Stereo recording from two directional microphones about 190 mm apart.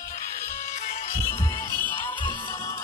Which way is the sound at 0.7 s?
35° left (ahead or behind).